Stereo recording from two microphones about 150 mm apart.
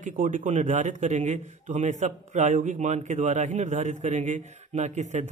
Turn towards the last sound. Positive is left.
turn(degrees=-50)  # may be behind; listen again after turning